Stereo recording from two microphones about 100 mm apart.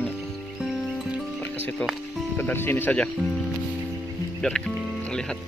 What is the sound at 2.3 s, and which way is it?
Speech, 20° left (ahead or behind).